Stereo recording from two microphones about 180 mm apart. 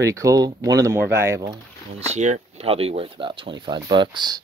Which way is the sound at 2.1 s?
40° right (ahead or behind).